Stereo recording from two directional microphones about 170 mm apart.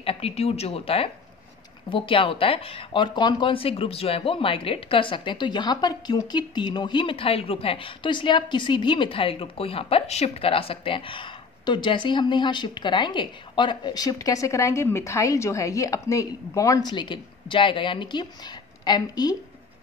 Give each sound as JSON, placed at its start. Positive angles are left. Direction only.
{"t": 0.0, "sound": "speech", "side_deg": 35}